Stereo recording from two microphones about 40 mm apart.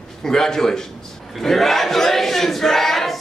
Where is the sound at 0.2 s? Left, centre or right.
Centre.